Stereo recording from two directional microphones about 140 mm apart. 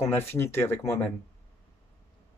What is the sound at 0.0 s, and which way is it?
Speech, 15° left (ahead or behind).